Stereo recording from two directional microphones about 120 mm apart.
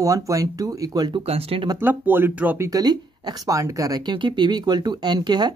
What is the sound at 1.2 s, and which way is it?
Speech, 55° right (ahead or behind).